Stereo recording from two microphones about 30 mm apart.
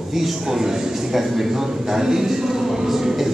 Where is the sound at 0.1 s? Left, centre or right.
Centre.